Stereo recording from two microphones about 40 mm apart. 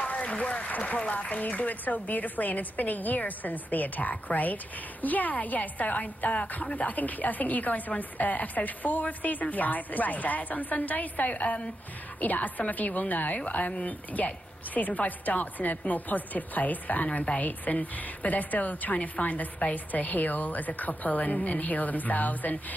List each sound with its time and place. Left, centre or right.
0.2 s a woman's voice: left